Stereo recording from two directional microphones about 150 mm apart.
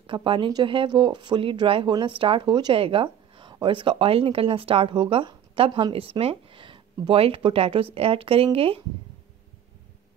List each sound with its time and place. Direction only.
0.0 s speech: 35° right (ahead or behind)